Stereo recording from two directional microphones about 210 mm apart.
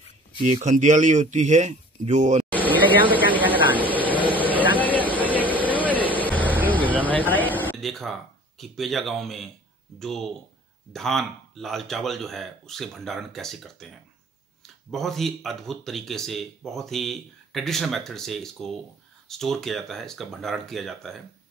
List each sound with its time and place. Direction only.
0.5 s speech: 35° right (ahead or behind)
2.5 s a sound: 10° left (ahead or behind)
3.2 s vehicle: 10° right (ahead or behind)
4.0 s vehicle: 10° left (ahead or behind)
7.1 s a sound: 10° left (ahead or behind)
9.9 s speech: centre (ahead or behind)